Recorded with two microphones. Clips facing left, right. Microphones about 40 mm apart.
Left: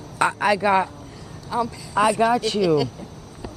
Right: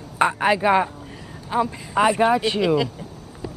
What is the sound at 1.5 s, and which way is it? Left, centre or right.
A woman's voice, right.